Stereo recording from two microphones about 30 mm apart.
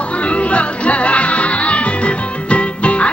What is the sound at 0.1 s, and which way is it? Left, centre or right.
Music, left.